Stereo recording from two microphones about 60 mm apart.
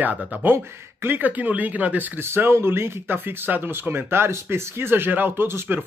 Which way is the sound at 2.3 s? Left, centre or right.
Right.